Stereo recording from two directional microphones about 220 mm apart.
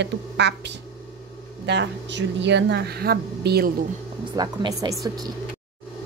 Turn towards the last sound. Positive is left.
turn(degrees=-15)  # may be behind; listen again after turning